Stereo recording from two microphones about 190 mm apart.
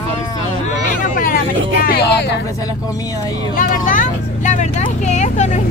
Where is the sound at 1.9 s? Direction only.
60° left (ahead or behind).